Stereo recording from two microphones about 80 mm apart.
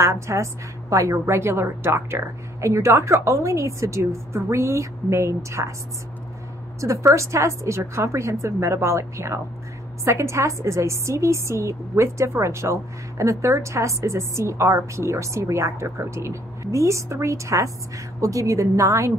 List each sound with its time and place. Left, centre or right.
0.0 s a woman's voice: right
6.8 s a woman's voice: right